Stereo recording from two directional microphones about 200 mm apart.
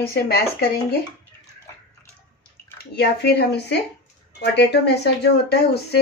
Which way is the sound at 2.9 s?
55° left (ahead or behind).